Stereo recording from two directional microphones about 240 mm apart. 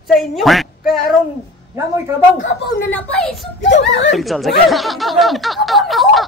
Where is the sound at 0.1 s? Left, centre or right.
Centre.